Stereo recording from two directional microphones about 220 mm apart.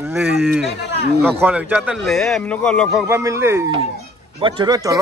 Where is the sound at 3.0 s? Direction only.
10° right (ahead or behind).